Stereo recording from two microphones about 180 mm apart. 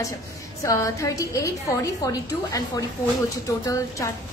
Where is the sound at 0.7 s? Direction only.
20° left (ahead or behind).